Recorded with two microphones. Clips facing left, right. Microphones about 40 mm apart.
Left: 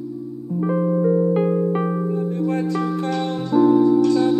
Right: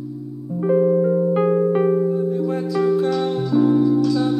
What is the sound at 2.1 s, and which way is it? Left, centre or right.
Music, left.